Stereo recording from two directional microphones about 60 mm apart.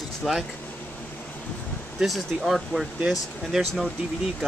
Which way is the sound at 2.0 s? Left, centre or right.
Centre.